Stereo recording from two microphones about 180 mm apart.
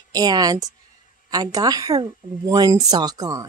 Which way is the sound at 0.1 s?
20° right (ahead or behind).